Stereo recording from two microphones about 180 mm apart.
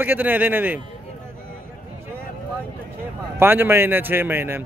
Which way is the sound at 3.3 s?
10° right (ahead or behind).